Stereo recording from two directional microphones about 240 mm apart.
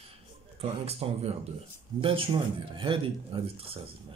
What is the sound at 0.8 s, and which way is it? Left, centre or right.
Speech, right.